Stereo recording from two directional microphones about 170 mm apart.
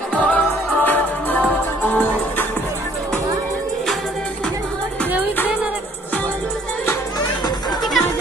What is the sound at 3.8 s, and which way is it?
Music, centre (ahead or behind).